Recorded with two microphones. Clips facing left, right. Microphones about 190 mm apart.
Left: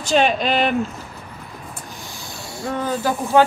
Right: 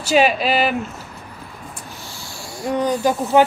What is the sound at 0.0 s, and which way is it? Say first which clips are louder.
Speech: right 1 dB; 5° right (ahead or behind).